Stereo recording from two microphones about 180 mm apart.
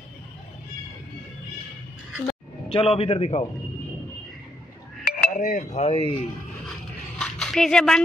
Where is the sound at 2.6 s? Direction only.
30° left (ahead or behind).